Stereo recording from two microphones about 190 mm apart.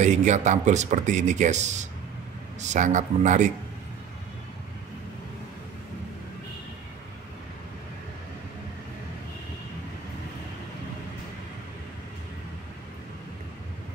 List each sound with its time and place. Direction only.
0.0 s speech: 40° right (ahead or behind)